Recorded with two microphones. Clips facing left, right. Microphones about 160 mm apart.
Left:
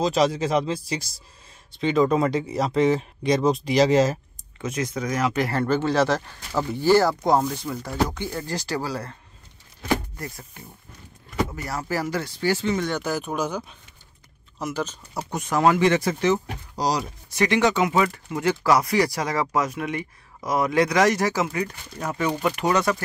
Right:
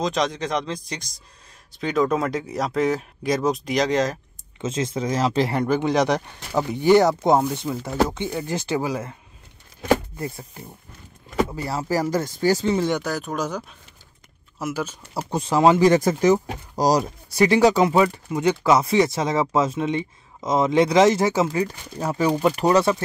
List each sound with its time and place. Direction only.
0.0 s speech: 5° left (ahead or behind)
4.6 s speech: 25° right (ahead or behind)
5.6 s speech: 15° right (ahead or behind)
10.1 s speech: 25° right (ahead or behind)
13.0 s speech: centre (ahead or behind)
15.2 s speech: 30° right (ahead or behind)
15.9 s speech: 40° right (ahead or behind)
18.3 s speech: 20° right (ahead or behind)